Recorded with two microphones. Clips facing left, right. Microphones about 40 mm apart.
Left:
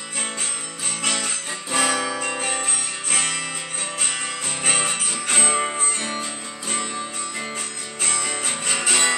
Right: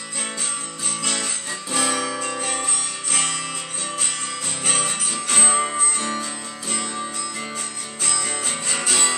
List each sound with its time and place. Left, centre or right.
1.0 s guitar: left
2.1 s music: left
4.6 s music: left
5.5 s music: left
8.4 s music: left